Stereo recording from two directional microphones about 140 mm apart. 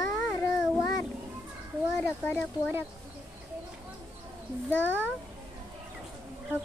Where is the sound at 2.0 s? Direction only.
15° left (ahead or behind).